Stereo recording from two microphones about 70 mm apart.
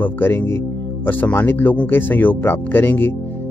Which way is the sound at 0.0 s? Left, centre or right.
Left.